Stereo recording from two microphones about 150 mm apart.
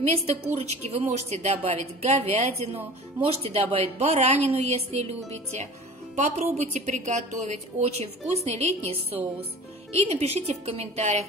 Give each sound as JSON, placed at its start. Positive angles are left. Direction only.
{"t": 0.6, "sound": "a woman's voice", "side_deg": -45}
{"t": 6.1, "sound": "a woman's voice", "side_deg": -50}